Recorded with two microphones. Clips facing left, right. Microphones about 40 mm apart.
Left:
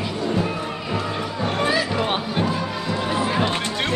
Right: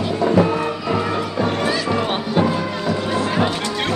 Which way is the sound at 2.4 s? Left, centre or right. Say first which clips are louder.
Right 7 dB; right.